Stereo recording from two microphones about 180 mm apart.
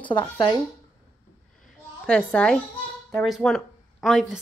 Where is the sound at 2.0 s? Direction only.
5° left (ahead or behind).